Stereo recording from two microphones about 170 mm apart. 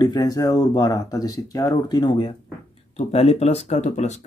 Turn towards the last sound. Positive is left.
turn(degrees=40)  # may be behind; listen again after turning